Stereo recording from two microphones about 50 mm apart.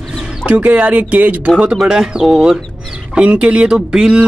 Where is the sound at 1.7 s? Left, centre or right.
Centre.